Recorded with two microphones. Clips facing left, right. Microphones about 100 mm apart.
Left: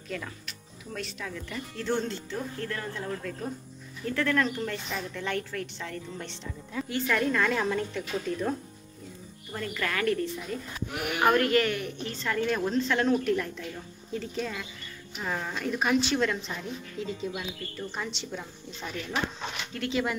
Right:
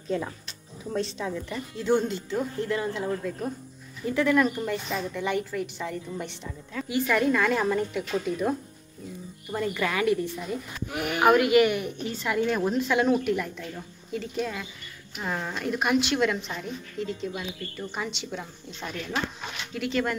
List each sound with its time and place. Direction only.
0.1 s a woman's voice: 25° right (ahead or behind)
1.5 s a woman's voice: 15° right (ahead or behind)
11.2 s a woman's voice: 10° right (ahead or behind); by 20.2 s 5° left (ahead or behind)